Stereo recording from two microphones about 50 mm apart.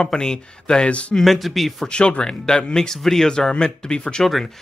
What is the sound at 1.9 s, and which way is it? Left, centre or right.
Speech, centre.